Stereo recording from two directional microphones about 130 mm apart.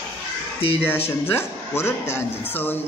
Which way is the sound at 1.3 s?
20° left (ahead or behind).